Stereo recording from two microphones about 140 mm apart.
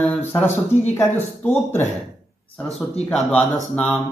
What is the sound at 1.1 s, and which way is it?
Speech, 15° left (ahead or behind).